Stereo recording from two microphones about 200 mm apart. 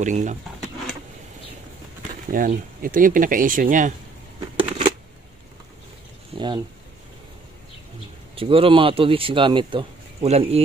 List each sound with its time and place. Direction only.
0.0 s speech: 35° right (ahead or behind)
2.3 s speech: 45° right (ahead or behind)
4.6 s shuffling cards: 25° right (ahead or behind)
6.3 s speech: 25° right (ahead or behind)
8.4 s speech: 25° right (ahead or behind)